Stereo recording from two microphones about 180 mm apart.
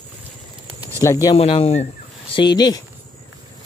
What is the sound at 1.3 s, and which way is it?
Speech, 35° left (ahead or behind).